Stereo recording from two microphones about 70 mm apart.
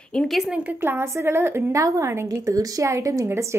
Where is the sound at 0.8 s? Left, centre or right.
Right.